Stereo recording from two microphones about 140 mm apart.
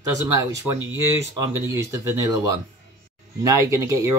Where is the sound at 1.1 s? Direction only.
20° right (ahead or behind).